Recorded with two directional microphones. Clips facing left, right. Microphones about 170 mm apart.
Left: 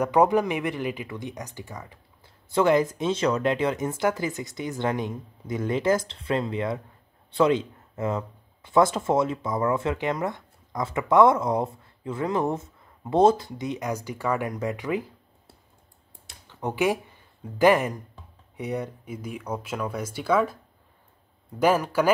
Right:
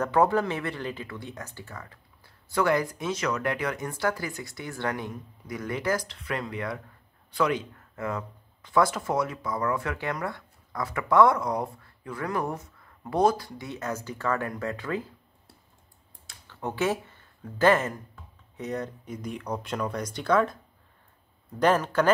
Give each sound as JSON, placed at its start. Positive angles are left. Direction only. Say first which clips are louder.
{"t": 0.0, "sound": "speech", "louder": "left 3 dB", "side_deg": 15}
{"t": 16.4, "sound": "speech", "louder": "left 3 dB", "side_deg": 15}
{"t": 21.5, "sound": "speech", "louder": "left 1 dB", "side_deg": 10}